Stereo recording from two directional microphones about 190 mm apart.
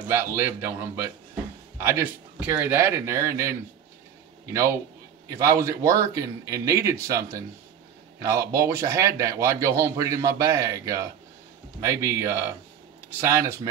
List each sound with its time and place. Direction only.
0.1 s a man's voice: 10° right (ahead or behind)
5.3 s a man's voice: 15° right (ahead or behind)